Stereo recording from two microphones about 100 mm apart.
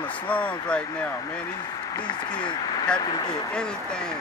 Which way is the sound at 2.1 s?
45° left (ahead or behind).